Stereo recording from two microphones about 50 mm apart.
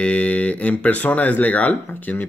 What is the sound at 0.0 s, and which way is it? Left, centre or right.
Speech, left.